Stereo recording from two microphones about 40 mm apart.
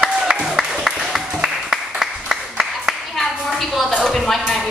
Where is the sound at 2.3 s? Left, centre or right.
Centre.